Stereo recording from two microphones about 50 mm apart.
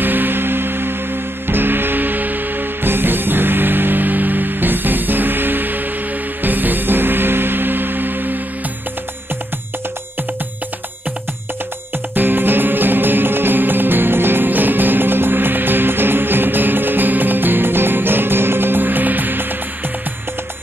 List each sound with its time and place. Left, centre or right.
0.0 s music: right
12.1 s music: right